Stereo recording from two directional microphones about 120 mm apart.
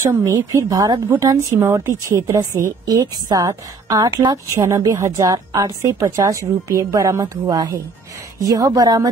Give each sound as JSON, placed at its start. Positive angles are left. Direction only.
{"t": 0.0, "sound": "a woman's voice", "side_deg": -30}